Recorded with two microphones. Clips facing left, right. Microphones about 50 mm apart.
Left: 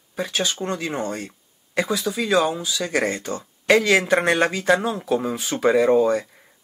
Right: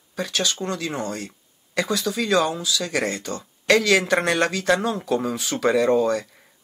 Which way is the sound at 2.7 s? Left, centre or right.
Left.